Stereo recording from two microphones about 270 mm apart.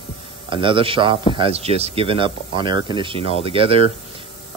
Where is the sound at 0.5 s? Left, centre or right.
Centre.